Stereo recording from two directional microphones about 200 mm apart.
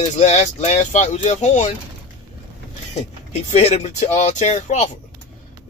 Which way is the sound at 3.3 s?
30° left (ahead or behind).